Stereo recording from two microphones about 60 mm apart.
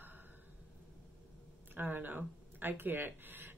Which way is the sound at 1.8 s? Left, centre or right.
Right.